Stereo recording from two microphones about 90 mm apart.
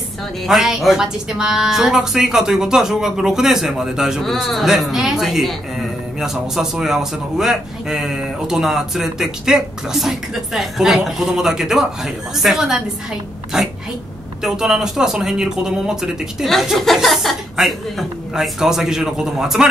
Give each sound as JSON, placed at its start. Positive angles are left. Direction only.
{"t": 0.5, "sound": "a woman's voice", "side_deg": -5}